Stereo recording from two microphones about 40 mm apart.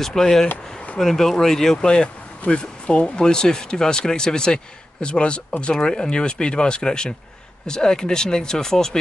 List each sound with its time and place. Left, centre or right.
0.0 s speech: centre